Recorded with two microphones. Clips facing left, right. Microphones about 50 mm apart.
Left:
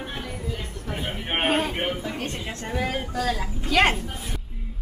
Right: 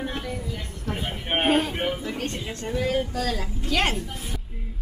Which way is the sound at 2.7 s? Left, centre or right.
Centre.